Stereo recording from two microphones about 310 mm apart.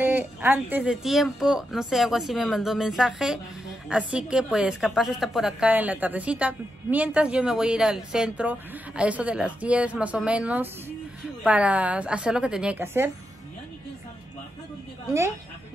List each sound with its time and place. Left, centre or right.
0.0 s a woman's voice: centre